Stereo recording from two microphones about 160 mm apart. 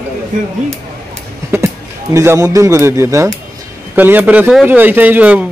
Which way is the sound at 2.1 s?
20° right (ahead or behind).